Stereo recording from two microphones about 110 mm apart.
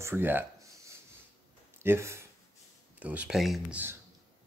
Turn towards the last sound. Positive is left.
turn(degrees=-20)  # may be behind; listen again after turning